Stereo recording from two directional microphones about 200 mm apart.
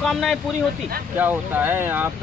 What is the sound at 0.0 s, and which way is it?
Speech, centre (ahead or behind).